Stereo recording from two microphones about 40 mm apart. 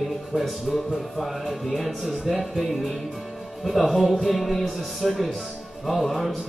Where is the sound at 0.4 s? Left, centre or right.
Centre.